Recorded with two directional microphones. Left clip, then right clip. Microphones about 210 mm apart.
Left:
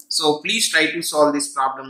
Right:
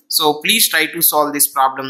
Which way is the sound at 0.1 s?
40° right (ahead or behind).